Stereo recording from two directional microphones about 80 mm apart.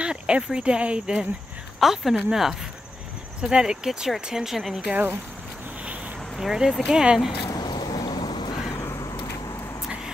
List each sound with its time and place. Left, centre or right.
0.0 s speech: centre
3.3 s speech: centre
4.9 s speech: right
6.3 s speech: centre
7.4 s vehicle: left
8.6 s vehicle: left